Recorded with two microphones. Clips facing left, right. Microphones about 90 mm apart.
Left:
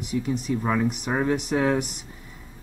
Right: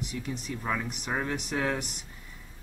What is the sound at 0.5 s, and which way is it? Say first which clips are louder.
Speech: left 8 dB; 15° left (ahead or behind).